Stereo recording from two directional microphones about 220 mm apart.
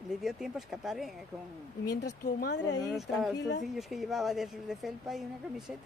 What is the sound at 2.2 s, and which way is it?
Speech, 50° left (ahead or behind).